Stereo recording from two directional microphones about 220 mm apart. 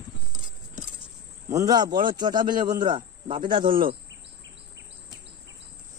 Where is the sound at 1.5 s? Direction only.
15° right (ahead or behind).